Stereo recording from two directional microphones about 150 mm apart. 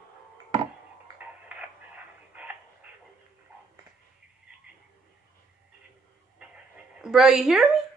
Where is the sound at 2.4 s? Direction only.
10° right (ahead or behind).